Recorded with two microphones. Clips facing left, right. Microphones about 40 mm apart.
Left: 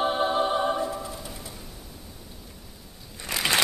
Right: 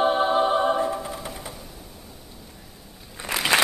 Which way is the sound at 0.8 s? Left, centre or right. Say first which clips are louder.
Right 4 dB; right.